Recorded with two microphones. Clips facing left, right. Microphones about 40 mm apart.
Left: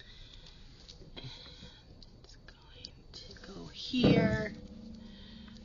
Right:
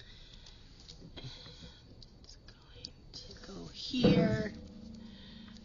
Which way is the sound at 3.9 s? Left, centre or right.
Centre.